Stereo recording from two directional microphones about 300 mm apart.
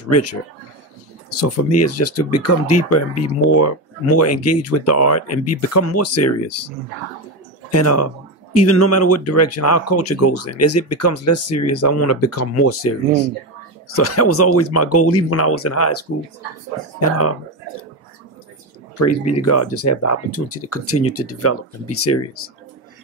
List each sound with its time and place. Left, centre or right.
0.1 s speech: left
1.4 s speech: left
7.7 s speech: left
13.9 s speech: left
18.9 s speech: left